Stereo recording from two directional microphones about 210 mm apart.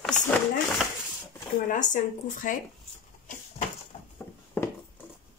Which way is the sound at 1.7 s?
35° left (ahead or behind).